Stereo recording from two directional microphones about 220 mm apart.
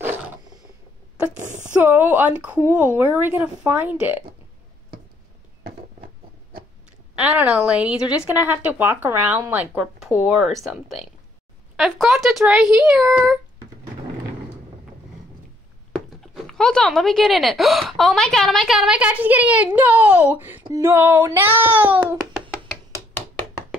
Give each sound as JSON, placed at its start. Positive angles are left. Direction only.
{"t": 1.3, "sound": "a sound", "side_deg": -35}
{"t": 1.8, "sound": "speech", "side_deg": -10}
{"t": 7.2, "sound": "speech", "side_deg": -5}
{"t": 15.9, "sound": "speech", "side_deg": 0}